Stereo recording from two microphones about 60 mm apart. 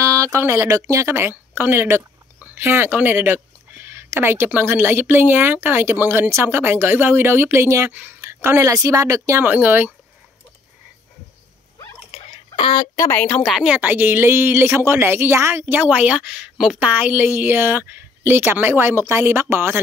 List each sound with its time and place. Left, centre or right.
0.0 s a sound: right
0.4 s speech: right
0.7 s speech: right
1.0 s a woman's voice: right
3.8 s a sound: right
4.6 s a woman's voice: right
7.9 s speech: right
8.2 s a sound: right
8.7 s speech: right
9.4 s a woman's voice: right
12.8 s speech: left
13.4 s a woman's voice: centre
13.7 s a woman's voice: right
15.6 s a woman's voice: right